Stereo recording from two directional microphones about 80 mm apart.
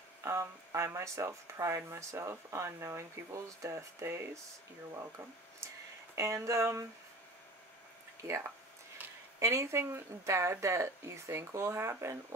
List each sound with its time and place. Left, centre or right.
0.2 s a sound: right
0.8 s speech: right
6.1 s speech: right
9.4 s speech: right